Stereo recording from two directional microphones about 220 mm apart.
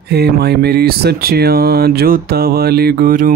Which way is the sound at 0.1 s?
45° right (ahead or behind).